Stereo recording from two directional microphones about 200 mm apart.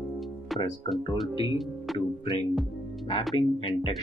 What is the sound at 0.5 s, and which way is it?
Speech, centre (ahead or behind).